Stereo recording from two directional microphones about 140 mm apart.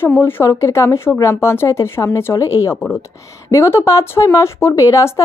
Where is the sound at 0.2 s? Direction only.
15° left (ahead or behind).